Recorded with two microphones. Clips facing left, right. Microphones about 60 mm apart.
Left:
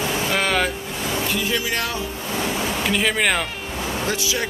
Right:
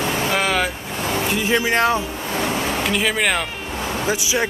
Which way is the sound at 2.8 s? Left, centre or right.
Centre.